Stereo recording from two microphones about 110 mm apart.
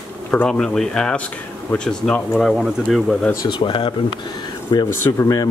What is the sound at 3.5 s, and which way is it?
Speech, 50° left (ahead or behind).